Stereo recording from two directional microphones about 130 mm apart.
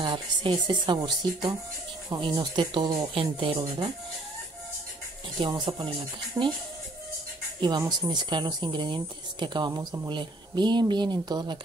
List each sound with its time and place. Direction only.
0.0 s speech: 40° right (ahead or behind)
5.4 s speech: 35° right (ahead or behind)
6.4 s speech: 15° right (ahead or behind)
7.6 s speech: 35° right (ahead or behind)